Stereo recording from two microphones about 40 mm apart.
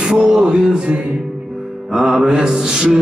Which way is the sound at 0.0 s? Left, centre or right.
Centre.